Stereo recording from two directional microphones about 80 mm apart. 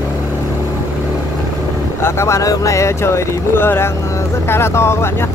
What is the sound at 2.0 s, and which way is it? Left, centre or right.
Speech, left.